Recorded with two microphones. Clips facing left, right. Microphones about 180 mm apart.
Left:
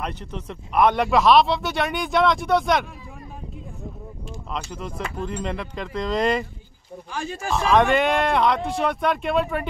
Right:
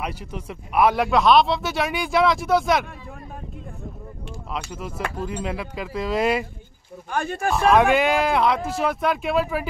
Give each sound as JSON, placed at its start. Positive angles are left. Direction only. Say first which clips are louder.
{"t": 0.0, "sound": "speech", "louder": "even", "side_deg": -10}
{"t": 4.6, "sound": "speech", "louder": "right 1 dB", "side_deg": -5}
{"t": 7.1, "sound": "speech", "louder": "right 5 dB", "side_deg": -55}
{"t": 7.5, "sound": "speech", "louder": "right 1 dB", "side_deg": -5}